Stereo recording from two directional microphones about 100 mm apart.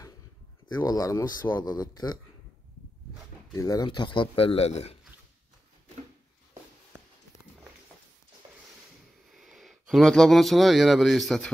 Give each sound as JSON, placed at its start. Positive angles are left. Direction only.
{"t": 0.7, "sound": "speech", "side_deg": 40}
{"t": 3.5, "sound": "speech", "side_deg": 35}
{"t": 3.8, "sound": "speech", "side_deg": 50}
{"t": 9.3, "sound": "speech", "side_deg": 0}